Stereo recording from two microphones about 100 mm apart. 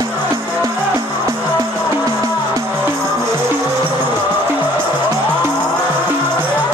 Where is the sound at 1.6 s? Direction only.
40° right (ahead or behind).